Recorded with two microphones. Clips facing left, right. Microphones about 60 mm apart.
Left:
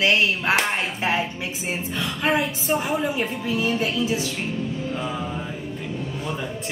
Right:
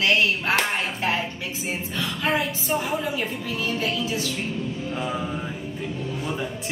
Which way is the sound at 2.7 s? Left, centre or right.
Centre.